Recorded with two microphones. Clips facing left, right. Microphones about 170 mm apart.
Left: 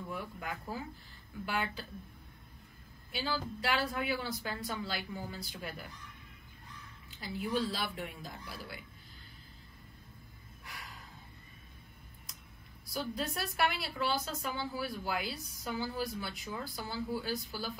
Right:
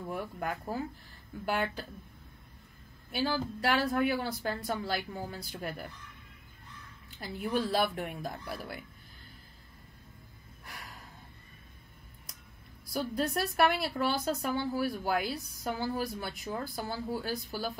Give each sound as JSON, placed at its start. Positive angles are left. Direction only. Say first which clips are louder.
{"t": 0.1, "sound": "a woman's voice", "louder": "right 7 dB", "side_deg": -50}
{"t": 3.1, "sound": "a woman's voice", "louder": "right 5 dB", "side_deg": -50}
{"t": 7.2, "sound": "a woman's voice", "louder": "right 2 dB", "side_deg": -55}
{"t": 12.9, "sound": "a woman's voice", "louder": "right 5 dB", "side_deg": -55}